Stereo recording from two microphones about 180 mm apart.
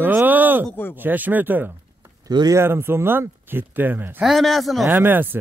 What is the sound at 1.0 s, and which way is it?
Speech, 10° right (ahead or behind).